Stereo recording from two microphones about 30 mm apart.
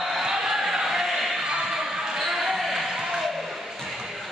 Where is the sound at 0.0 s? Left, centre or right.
Centre.